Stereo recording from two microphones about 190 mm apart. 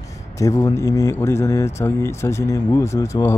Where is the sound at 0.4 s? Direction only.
15° left (ahead or behind).